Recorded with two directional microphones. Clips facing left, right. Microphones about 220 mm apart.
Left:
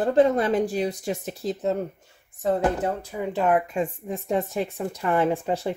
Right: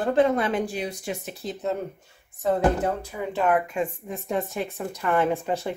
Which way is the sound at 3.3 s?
35° left (ahead or behind).